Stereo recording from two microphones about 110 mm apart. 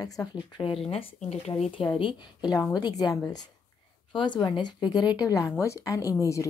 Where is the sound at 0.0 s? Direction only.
35° left (ahead or behind).